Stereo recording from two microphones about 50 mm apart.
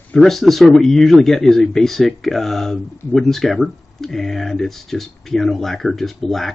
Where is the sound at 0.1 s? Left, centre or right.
Centre.